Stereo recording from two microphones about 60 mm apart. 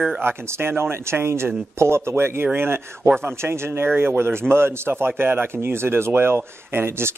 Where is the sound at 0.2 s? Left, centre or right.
Right.